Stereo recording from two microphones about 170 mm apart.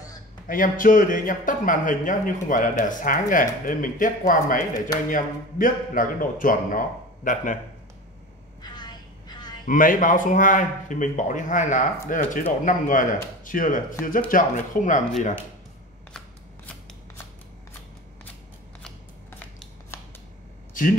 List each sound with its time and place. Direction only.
0.5 s speech: 55° left (ahead or behind)
8.6 s vehicle: 25° left (ahead or behind)
9.7 s speech: 55° left (ahead or behind)